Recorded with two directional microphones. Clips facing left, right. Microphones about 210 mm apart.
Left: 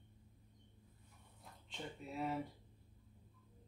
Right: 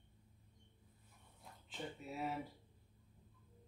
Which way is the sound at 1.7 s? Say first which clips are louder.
Right 1 dB; 5° right (ahead or behind).